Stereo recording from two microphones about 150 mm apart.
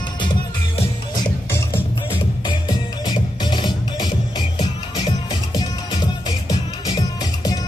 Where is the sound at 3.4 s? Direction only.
30° left (ahead or behind).